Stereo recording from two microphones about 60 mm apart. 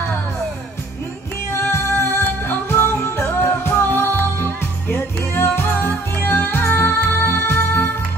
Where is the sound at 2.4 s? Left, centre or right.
Left.